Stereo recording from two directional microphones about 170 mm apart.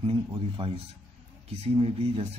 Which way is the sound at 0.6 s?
30° right (ahead or behind).